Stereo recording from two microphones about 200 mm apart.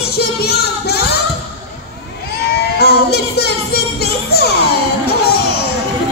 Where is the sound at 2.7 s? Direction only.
55° left (ahead or behind).